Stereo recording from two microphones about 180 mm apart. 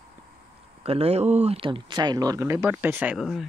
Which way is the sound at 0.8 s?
35° right (ahead or behind).